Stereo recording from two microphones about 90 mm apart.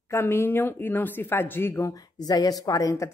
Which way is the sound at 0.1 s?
25° left (ahead or behind).